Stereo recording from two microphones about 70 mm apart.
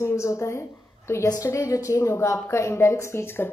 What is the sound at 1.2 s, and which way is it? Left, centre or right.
A woman's voice, left.